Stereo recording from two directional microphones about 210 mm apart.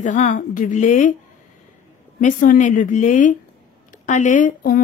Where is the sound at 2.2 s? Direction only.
40° left (ahead or behind).